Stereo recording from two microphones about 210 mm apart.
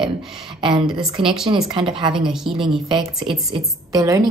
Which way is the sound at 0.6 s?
25° right (ahead or behind).